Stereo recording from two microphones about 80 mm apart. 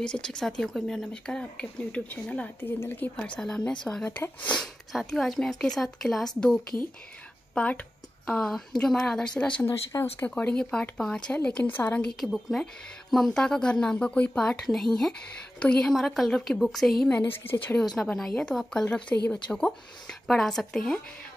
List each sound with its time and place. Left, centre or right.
0.0 s speech: centre
3.2 s speech: centre
4.1 s speech: left
4.6 s a woman's voice: centre
7.5 s speech: centre
8.3 s speech: centre
9.7 s speech: left
10.3 s a woman's voice: centre
15.9 s a woman's voice: centre
17.3 s speech: left
17.7 s a woman's voice: centre